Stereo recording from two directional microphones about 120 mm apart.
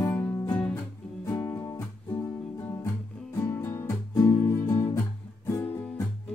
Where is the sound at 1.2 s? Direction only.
30° left (ahead or behind).